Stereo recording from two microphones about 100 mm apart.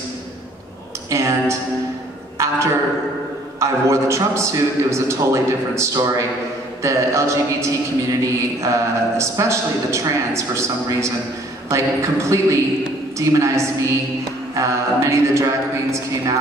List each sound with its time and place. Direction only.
1.1 s a man's voice: 30° right (ahead or behind)